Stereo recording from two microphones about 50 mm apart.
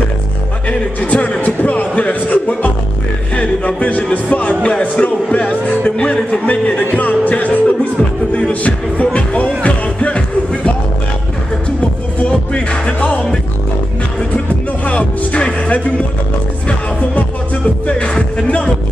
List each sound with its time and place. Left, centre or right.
0.7 s speech: left
3.3 s music: left
4.6 s a sound: centre
5.0 s music: left
6.5 s a sound: left
6.8 s music: left
12.3 s music: centre
13.0 s music: left
14.9 s music: left
17.8 s music: left